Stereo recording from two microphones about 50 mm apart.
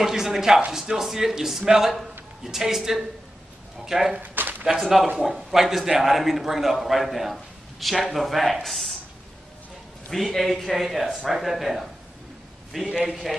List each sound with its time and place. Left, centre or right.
0.0 s a man's voice: centre
4.2 s a sound: right
4.7 s a man's voice: centre
10.0 s a man's voice: centre